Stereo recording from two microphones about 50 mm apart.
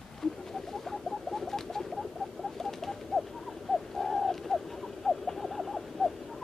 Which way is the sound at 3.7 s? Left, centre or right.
Centre.